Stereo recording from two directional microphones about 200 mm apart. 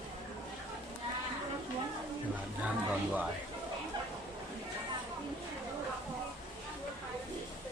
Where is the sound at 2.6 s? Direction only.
5° right (ahead or behind).